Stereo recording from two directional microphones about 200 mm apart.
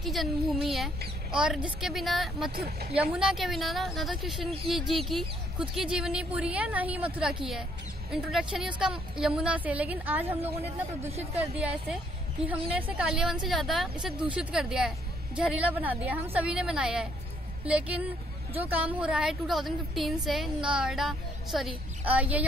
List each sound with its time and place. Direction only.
0.0 s a woman's voice: centre (ahead or behind)
2.5 s speech: 50° right (ahead or behind)
3.0 s a woman's voice: 5° right (ahead or behind)
11.3 s a woman's voice: 5° right (ahead or behind)